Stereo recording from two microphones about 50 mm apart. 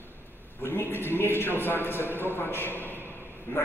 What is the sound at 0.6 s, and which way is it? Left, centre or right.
A man's voice, left.